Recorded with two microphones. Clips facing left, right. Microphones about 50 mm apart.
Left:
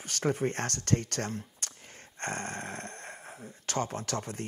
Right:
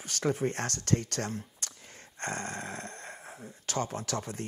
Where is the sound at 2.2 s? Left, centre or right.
Left.